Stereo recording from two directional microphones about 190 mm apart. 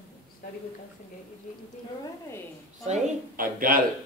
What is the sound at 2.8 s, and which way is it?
Speech, 35° right (ahead or behind).